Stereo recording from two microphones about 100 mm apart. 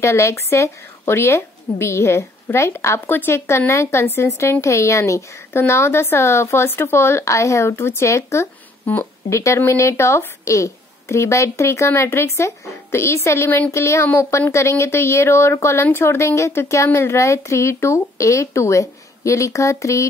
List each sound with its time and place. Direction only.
0.0 s a woman's voice: 30° left (ahead or behind)